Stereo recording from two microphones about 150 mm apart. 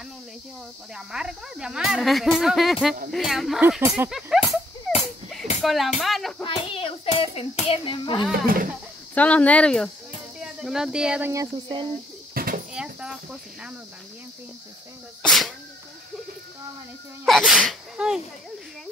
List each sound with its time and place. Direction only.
0.9 s speech: 5° right (ahead or behind)
5.6 s speech: centre (ahead or behind)
6.4 s hands: 35° left (ahead or behind)
8.3 s speech: 75° right (ahead or behind)
9.1 s speech: 10° left (ahead or behind)
10.4 s speech: 5° right (ahead or behind)
11.5 s speech: 30° right (ahead or behind)
12.4 s a sound: 80° right
12.7 s speech: 5° right (ahead or behind)
15.2 s speech: centre (ahead or behind)
17.2 s speech: 5° right (ahead or behind)